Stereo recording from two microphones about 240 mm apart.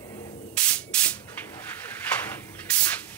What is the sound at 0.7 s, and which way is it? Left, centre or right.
Spray, centre.